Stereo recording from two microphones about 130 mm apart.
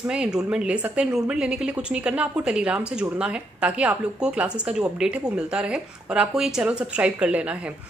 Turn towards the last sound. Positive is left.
turn(degrees=-10)  # may be behind; listen again after turning